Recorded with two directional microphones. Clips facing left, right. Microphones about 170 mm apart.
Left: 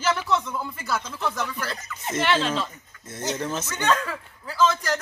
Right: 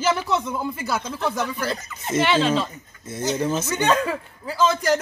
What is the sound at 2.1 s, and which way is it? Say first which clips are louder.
Speech: right 4 dB; 5° right (ahead or behind).